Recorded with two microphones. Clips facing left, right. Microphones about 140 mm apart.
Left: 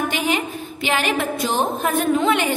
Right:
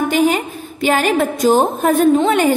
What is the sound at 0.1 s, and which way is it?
A woman's voice, 40° right (ahead or behind).